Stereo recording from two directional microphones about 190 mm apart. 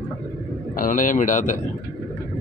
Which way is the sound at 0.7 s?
45° left (ahead or behind).